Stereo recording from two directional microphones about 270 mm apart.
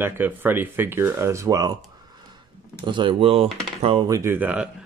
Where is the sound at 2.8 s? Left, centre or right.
Centre.